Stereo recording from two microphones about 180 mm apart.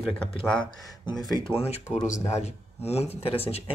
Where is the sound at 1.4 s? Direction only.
35° left (ahead or behind).